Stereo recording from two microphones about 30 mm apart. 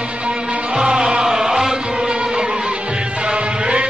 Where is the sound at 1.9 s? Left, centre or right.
Right.